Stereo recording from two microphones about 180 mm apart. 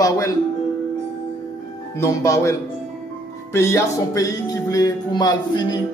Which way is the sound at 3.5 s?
15° left (ahead or behind).